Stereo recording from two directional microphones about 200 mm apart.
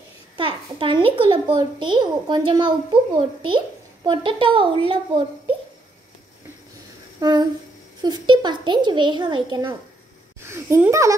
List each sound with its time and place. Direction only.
0.4 s a woman's voice: 25° right (ahead or behind)
7.2 s a sound: 20° right (ahead or behind)
8.0 s a woman's voice: 20° right (ahead or behind)